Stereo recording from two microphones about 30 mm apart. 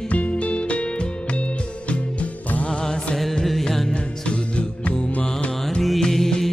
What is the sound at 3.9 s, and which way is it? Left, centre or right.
Music, left.